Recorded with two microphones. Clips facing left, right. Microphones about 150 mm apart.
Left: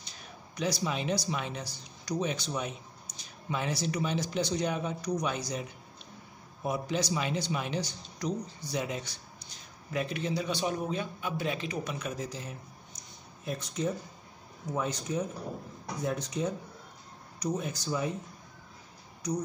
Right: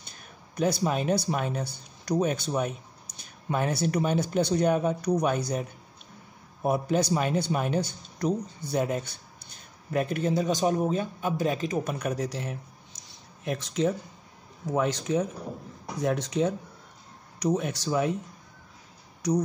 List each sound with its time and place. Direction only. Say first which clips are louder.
0.1 s speech: even; 50° right (ahead or behind); by 12.5 s 70° right (ahead or behind)
13.1 s a sound: right 5 dB; 80° right
14.7 s speech: right 7 dB; 90° right; by 18.1 s 70° right (ahead or behind)
19.2 s speech: right 7 dB; 90° right